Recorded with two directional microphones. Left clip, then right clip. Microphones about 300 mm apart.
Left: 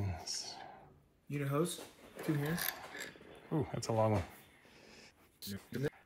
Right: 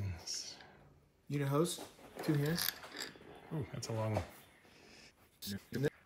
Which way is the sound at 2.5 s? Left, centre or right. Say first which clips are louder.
Right 1 dB; centre.